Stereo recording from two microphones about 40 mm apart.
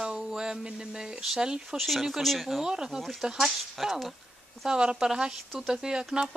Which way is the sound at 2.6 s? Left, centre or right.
Centre.